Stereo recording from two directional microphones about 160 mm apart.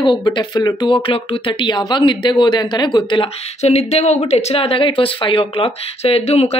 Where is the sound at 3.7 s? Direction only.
45° left (ahead or behind).